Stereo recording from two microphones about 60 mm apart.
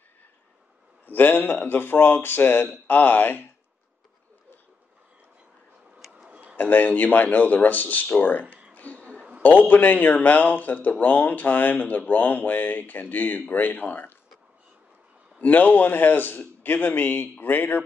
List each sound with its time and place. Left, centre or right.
1.0 s a man's voice: left
6.1 s tick-tock: centre
6.5 s a man's voice: left
8.7 s a sound: left
9.4 s speech: left
15.4 s a man's voice: left